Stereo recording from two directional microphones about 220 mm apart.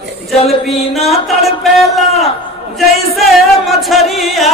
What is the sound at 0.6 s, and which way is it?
Speech, centre (ahead or behind).